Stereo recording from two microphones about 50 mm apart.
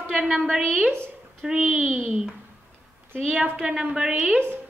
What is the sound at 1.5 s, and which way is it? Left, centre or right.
Speech, centre.